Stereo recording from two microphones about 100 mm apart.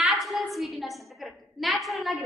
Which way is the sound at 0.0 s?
Centre (ahead or behind).